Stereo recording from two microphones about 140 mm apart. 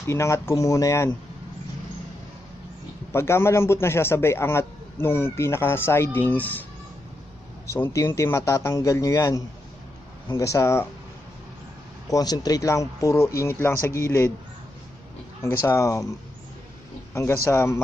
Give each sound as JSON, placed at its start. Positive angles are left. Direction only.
{"t": 0.0, "sound": "speech", "side_deg": 20}
{"t": 3.1, "sound": "a man's voice", "side_deg": 20}
{"t": 7.6, "sound": "speech", "side_deg": 20}
{"t": 12.1, "sound": "speech", "side_deg": 25}
{"t": 15.6, "sound": "speech", "side_deg": 20}
{"t": 17.1, "sound": "a man's voice", "side_deg": 20}